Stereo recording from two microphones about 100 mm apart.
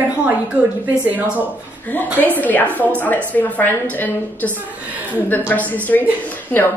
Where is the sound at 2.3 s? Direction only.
15° left (ahead or behind).